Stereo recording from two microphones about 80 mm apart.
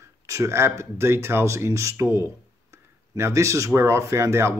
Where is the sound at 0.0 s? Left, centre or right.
Right.